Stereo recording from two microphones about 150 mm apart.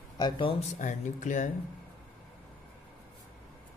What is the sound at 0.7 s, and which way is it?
Speech, 55° left (ahead or behind).